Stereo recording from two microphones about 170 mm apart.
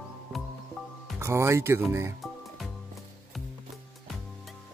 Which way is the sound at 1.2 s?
15° right (ahead or behind).